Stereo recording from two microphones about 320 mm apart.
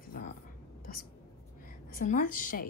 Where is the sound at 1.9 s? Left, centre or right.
Left.